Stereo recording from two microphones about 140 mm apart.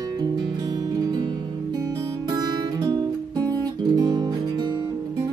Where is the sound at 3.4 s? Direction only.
15° left (ahead or behind).